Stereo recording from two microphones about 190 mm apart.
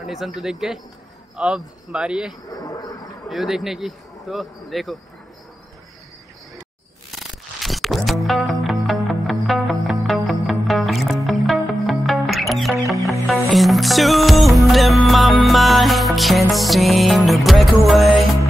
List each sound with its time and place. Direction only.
0.0 s speech: centre (ahead or behind)
2.6 s a sound: 20° left (ahead or behind)
3.3 s speech: centre (ahead or behind)
7.1 s music: centre (ahead or behind)